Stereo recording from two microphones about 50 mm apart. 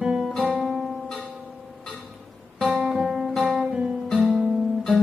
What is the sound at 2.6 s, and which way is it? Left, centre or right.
Music, centre.